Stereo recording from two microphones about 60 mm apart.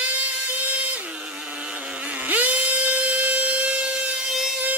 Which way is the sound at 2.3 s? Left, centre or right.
Right.